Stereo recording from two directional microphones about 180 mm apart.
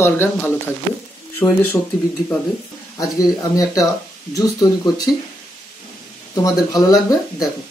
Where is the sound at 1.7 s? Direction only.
10° left (ahead or behind).